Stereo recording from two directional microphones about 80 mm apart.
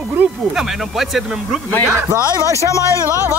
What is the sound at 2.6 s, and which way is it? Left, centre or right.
Speech, left.